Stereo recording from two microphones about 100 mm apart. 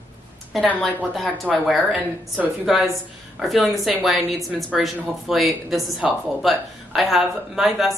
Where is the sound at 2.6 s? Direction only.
5° right (ahead or behind).